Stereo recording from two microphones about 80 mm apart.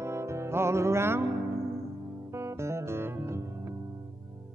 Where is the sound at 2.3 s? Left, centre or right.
Right.